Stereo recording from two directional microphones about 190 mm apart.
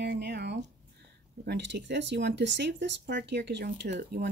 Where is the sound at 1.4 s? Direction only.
65° right (ahead or behind).